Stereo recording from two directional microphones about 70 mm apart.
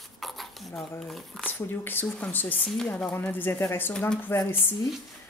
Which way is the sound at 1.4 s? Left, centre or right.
Left.